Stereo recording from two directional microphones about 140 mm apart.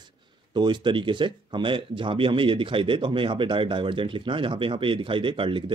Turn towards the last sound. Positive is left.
turn(degrees=-40)  # may be behind; listen again after turning